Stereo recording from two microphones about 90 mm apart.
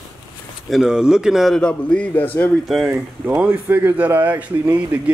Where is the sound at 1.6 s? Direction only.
10° left (ahead or behind).